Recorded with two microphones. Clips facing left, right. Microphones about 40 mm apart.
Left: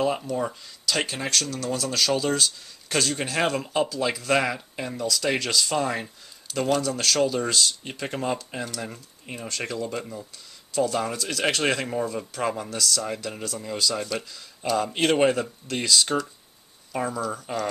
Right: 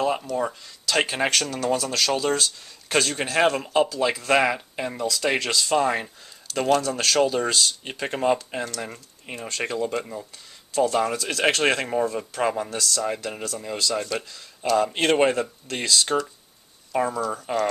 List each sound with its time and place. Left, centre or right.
0.0 s speech: centre
1.1 s speech: right
1.8 s speech: centre
3.6 s speech: centre